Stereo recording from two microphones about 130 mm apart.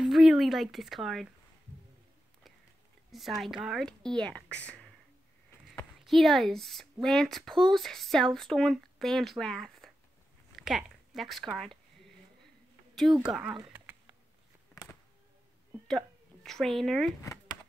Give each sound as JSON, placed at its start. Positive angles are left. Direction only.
{"t": 0.0, "sound": "speech", "side_deg": 0}
{"t": 3.1, "sound": "speech", "side_deg": 0}
{"t": 5.9, "sound": "speech", "side_deg": 0}
{"t": 13.2, "sound": "speech", "side_deg": -5}
{"t": 13.7, "sound": "a sound", "side_deg": -15}
{"t": 16.4, "sound": "speech", "side_deg": 0}